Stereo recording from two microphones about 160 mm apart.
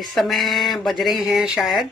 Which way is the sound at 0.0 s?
Centre (ahead or behind).